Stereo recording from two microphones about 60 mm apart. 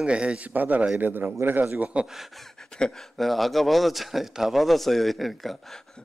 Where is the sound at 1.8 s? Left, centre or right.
Centre.